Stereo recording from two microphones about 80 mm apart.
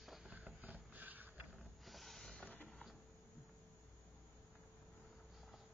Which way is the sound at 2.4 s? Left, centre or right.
Centre.